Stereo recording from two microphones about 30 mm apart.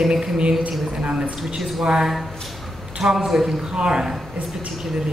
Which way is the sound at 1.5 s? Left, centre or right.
Right.